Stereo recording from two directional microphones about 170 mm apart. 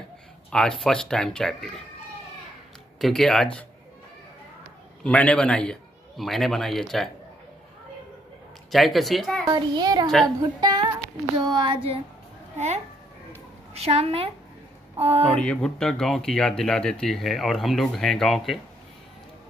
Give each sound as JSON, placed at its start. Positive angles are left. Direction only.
{"t": 0.5, "sound": "speech", "side_deg": 5}
{"t": 3.0, "sound": "speech", "side_deg": 0}
{"t": 5.0, "sound": "a man's voice", "side_deg": 5}
{"t": 8.7, "sound": "speech", "side_deg": 0}
{"t": 9.5, "sound": "a child's voice", "side_deg": -25}
{"t": 11.3, "sound": "a sound", "side_deg": -25}
{"t": 12.5, "sound": "a child's voice", "side_deg": -40}
{"t": 13.7, "sound": "a sound", "side_deg": -35}
{"t": 15.3, "sound": "speech", "side_deg": 5}